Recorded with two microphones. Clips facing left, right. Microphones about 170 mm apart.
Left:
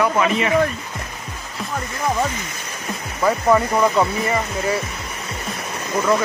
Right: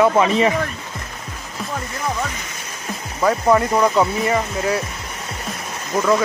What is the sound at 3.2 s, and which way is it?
Speech, centre (ahead or behind).